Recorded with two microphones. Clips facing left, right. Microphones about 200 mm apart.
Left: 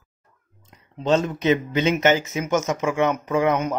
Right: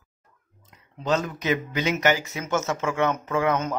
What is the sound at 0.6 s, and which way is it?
Speech, 25° left (ahead or behind).